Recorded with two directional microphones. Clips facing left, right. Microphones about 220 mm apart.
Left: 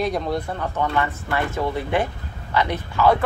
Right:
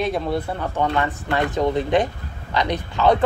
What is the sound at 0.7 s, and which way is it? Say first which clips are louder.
Speech: right 2 dB; 20° right (ahead or behind).